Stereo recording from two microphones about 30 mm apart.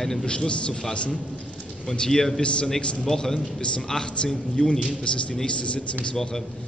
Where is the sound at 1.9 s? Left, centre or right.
Centre.